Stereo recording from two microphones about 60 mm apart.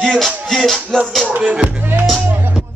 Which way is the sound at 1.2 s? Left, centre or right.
Right.